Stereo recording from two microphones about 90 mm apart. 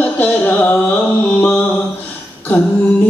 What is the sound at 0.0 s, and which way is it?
Music, 20° left (ahead or behind).